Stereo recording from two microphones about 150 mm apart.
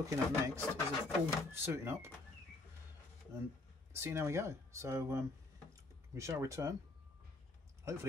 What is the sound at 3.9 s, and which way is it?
Speech, 15° right (ahead or behind).